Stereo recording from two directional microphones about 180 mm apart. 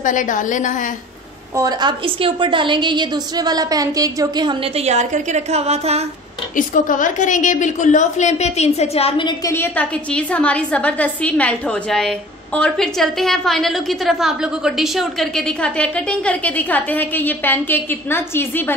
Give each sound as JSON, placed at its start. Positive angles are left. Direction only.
{"t": 0.0, "sound": "a woman's voice", "side_deg": 45}
{"t": 1.6, "sound": "a woman's voice", "side_deg": -20}
{"t": 6.5, "sound": "a woman's voice", "side_deg": 45}
{"t": 9.4, "sound": "a woman's voice", "side_deg": 15}